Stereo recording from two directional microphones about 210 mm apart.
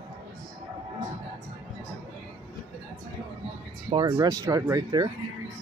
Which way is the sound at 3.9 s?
20° right (ahead or behind).